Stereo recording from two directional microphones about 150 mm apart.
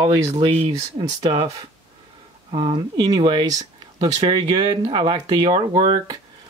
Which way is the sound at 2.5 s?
30° right (ahead or behind).